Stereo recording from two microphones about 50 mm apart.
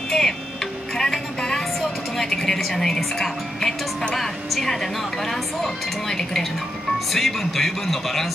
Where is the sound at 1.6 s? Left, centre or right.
Centre.